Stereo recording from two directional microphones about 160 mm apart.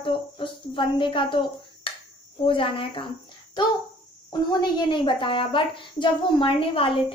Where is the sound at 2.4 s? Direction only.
35° left (ahead or behind).